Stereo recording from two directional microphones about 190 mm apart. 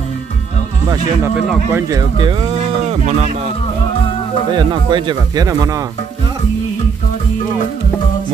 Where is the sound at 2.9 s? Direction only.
35° right (ahead or behind).